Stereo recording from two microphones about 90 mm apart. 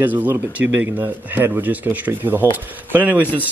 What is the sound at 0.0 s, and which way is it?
Speech, 20° right (ahead or behind).